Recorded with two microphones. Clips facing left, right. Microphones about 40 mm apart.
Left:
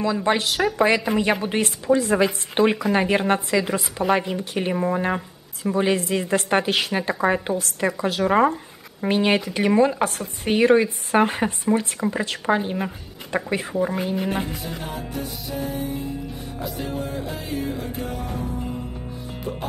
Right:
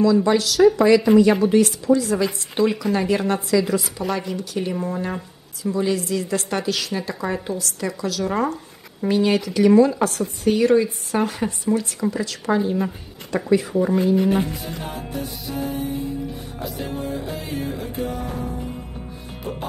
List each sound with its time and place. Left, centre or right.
0.0 s speech: left
13.7 s speech: centre